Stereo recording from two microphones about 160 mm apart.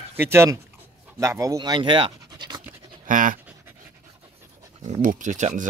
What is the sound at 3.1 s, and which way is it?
Dog, 55° right (ahead or behind).